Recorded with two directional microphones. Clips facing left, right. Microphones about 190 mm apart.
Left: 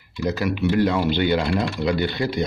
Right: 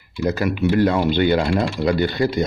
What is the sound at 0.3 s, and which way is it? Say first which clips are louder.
Speech: right 2 dB; 50° right (ahead or behind).